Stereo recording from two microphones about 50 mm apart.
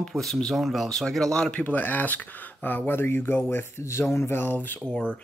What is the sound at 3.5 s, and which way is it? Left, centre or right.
Speech, left.